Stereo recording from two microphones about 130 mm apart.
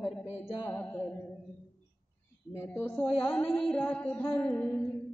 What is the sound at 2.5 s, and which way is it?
Speech, 20° left (ahead or behind).